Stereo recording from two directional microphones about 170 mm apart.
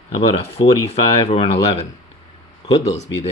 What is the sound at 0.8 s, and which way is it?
Speech, 35° left (ahead or behind).